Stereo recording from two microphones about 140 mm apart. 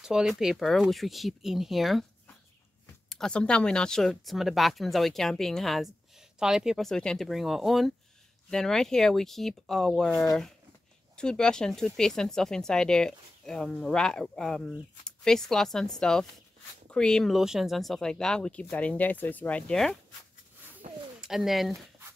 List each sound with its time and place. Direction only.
0.0 s speech: 5° right (ahead or behind)
3.1 s speech: 5° left (ahead or behind)
20.8 s a sound: 60° right (ahead or behind)
21.2 s speech: centre (ahead or behind)